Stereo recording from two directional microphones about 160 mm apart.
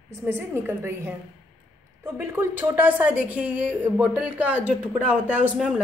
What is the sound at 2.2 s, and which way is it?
A woman's voice, 15° right (ahead or behind).